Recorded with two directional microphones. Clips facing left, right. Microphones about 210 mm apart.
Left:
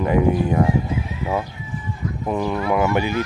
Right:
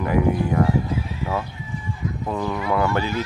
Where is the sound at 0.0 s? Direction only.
20° left (ahead or behind).